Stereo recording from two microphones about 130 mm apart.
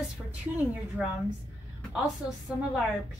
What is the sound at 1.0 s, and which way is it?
Speech, centre (ahead or behind).